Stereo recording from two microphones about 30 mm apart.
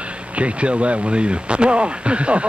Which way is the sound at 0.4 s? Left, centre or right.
Right.